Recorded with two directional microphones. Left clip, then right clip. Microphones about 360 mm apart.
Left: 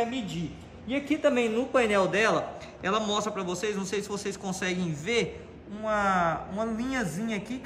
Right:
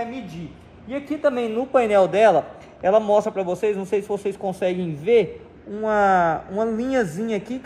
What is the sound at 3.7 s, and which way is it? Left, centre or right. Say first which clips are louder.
Speech: right 9 dB; centre.